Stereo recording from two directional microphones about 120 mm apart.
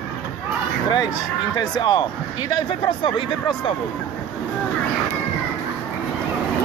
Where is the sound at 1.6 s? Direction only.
40° left (ahead or behind).